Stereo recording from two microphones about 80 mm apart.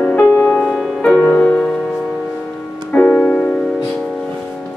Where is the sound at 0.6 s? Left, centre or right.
Centre.